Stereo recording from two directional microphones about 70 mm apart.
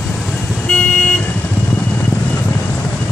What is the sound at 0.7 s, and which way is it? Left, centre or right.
Vehicle, centre.